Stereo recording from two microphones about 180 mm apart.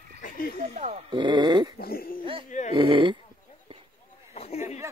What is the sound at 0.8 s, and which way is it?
Speech, 40° right (ahead or behind).